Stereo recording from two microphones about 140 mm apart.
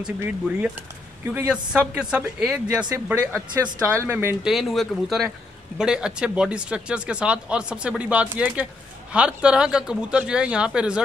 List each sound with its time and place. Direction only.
0.0 s speech: 15° right (ahead or behind)
3.8 s speech: 20° right (ahead or behind)
4.5 s speech: centre (ahead or behind)